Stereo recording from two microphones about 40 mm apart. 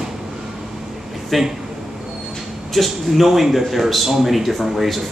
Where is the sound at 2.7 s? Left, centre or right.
Centre.